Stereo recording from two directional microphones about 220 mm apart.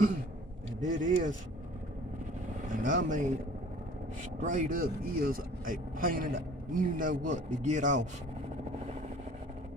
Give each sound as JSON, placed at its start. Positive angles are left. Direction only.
{"t": 0.8, "sound": "speech", "side_deg": -35}
{"t": 2.7, "sound": "speech", "side_deg": -35}
{"t": 4.4, "sound": "speech", "side_deg": -35}